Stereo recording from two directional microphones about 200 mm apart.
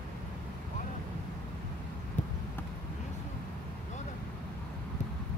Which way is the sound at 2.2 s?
35° left (ahead or behind).